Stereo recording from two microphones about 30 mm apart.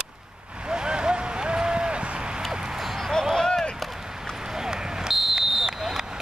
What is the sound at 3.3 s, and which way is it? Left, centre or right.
Run, centre.